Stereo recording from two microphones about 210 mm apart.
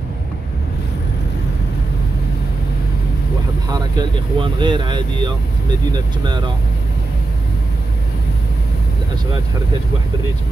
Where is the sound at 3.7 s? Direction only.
20° right (ahead or behind).